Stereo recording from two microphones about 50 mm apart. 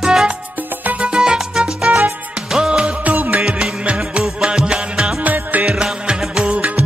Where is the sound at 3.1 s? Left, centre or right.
Right.